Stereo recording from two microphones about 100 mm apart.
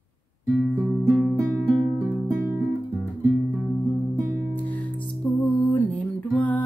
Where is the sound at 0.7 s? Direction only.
5° left (ahead or behind).